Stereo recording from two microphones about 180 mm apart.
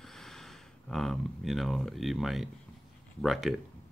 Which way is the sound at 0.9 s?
Centre (ahead or behind).